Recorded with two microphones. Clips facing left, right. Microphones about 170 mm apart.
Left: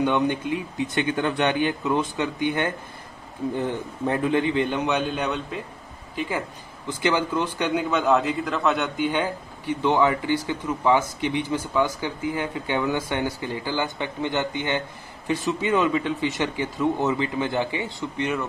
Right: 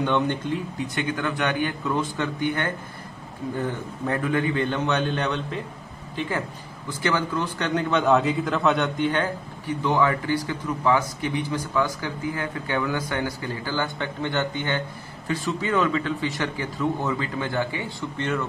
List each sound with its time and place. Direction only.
0.0 s a man's voice: 15° left (ahead or behind)
0.9 s speech: 25° left (ahead or behind)
4.1 s a man's voice: 20° left (ahead or behind)